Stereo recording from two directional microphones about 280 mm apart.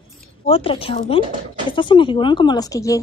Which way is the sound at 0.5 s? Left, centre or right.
Centre.